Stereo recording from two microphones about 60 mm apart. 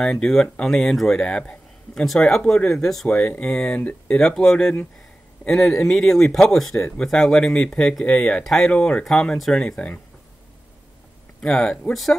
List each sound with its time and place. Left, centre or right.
0.0 s speech: centre
1.2 s speech: centre
3.7 s speech: left
4.2 s speech: centre
11.4 s speech: centre